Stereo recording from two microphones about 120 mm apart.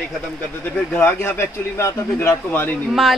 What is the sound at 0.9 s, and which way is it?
A man's voice, 15° left (ahead or behind).